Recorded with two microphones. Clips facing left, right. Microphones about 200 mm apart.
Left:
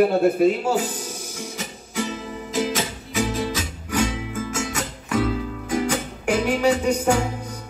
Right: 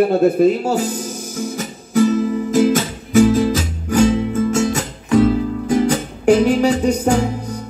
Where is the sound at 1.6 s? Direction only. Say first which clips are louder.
Right 13 dB; 45° right (ahead or behind).